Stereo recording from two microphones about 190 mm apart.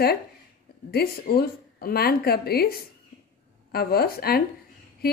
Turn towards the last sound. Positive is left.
turn(degrees=55)  # may be behind; listen again after turning